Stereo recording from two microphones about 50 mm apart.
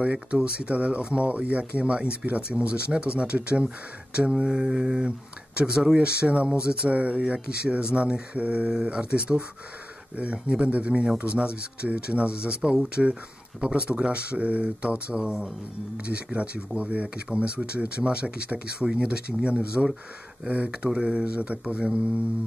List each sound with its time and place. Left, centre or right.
0.0 s speech: right
4.1 s a sound: right
5.9 s speech: right
13.8 s speech: right
15.1 s a sound: centre
16.1 s speech: right